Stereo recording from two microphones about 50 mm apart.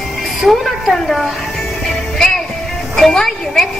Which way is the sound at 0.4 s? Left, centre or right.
Centre.